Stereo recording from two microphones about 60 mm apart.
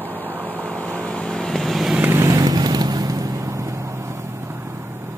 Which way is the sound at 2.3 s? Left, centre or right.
Right.